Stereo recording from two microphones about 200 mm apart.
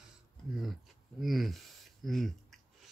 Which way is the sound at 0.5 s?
Centre (ahead or behind).